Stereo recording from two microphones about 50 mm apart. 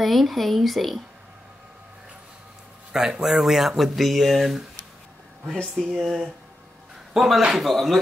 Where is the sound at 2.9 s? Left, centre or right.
Centre.